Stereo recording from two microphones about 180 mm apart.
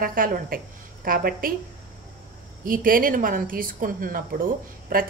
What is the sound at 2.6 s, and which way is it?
A woman's voice, 50° right (ahead or behind).